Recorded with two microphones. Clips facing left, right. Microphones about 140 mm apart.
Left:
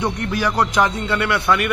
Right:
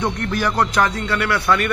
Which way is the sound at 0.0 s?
10° left (ahead or behind).